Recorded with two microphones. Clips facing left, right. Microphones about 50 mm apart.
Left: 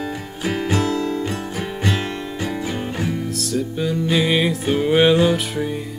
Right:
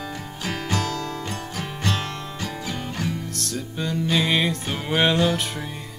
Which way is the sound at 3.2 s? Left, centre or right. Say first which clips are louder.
Left 8 dB; centre.